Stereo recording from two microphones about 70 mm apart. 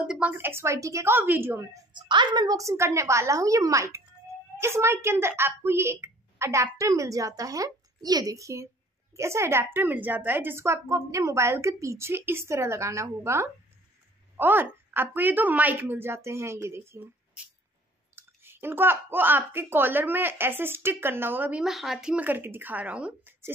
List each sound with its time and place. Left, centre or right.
0.0 s a woman's voice: centre
0.3 s a woman's voice: right
1.1 s a woman's voice: right
2.0 s a woman's voice: right
2.5 s a woman's voice: right
18.1 s a woman's voice: right
21.5 s speech: centre
22.1 s speech: right